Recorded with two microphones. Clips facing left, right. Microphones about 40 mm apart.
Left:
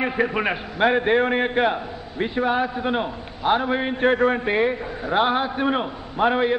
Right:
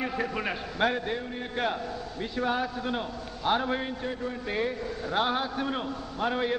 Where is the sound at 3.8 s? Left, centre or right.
Left.